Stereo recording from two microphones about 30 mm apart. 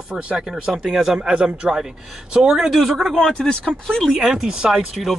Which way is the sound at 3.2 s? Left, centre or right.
Centre.